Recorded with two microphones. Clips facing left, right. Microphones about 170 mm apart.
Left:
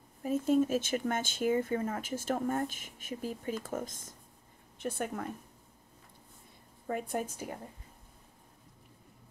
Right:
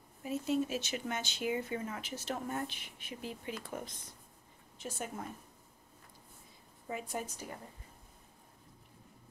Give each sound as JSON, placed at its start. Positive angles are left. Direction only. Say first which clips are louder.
{"t": 0.2, "sound": "speech", "louder": "left 6 dB", "side_deg": 50}
{"t": 4.7, "sound": "a woman's voice", "louder": "left 6 dB", "side_deg": 55}
{"t": 6.9, "sound": "speech", "louder": "left 5 dB", "side_deg": 50}